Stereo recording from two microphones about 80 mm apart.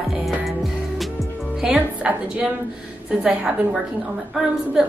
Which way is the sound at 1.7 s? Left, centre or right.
Centre.